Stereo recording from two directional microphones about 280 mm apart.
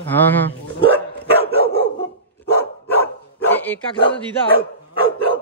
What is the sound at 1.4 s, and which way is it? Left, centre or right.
Dog, left.